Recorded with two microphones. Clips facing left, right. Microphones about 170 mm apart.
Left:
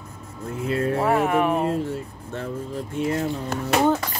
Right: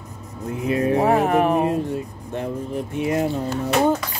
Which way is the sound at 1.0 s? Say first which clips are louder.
Right 2 dB; 40° right (ahead or behind).